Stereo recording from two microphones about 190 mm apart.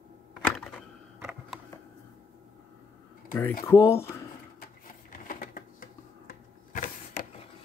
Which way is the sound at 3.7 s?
15° left (ahead or behind).